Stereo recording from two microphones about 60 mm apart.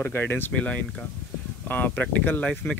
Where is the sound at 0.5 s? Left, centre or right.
Left.